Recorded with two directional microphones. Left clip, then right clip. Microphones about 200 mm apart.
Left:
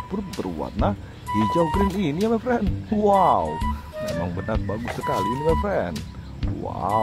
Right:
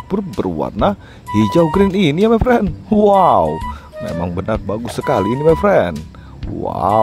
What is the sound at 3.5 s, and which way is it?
Music, centre (ahead or behind).